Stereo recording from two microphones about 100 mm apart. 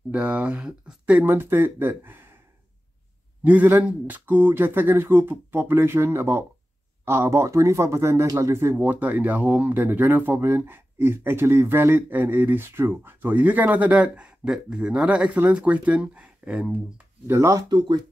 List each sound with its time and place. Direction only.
0.1 s speech: 15° right (ahead or behind)
1.2 s speech: 20° right (ahead or behind)
3.4 s speech: 15° right (ahead or behind)
8.7 s speech: 15° right (ahead or behind)
17.3 s speech: 30° right (ahead or behind)
17.6 s speech: 50° right (ahead or behind)